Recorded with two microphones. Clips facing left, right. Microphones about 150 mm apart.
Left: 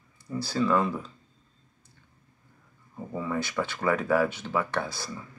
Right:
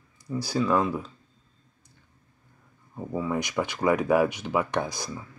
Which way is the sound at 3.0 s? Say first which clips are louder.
Right 2 dB; 15° right (ahead or behind).